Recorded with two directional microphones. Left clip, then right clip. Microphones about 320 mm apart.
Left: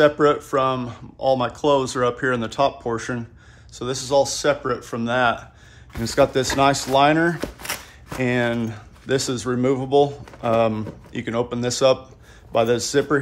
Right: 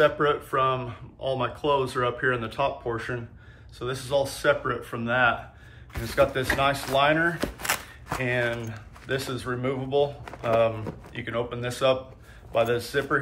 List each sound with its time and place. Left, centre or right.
0.0 s speech: centre
7.3 s a sound: centre
8.2 s speech: centre